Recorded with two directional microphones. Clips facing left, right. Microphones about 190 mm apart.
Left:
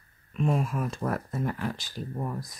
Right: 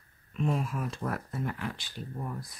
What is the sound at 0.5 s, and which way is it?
Speech, 50° left (ahead or behind).